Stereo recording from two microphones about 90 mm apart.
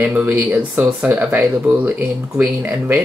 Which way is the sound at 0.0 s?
20° right (ahead or behind).